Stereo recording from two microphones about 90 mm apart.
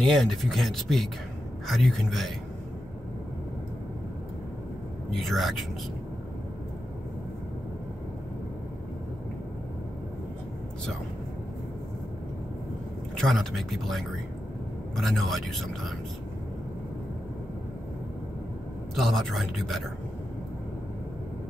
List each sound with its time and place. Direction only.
0.0 s speech: centre (ahead or behind)
5.1 s speech: centre (ahead or behind)
13.1 s speech: 5° left (ahead or behind)
18.9 s speech: centre (ahead or behind)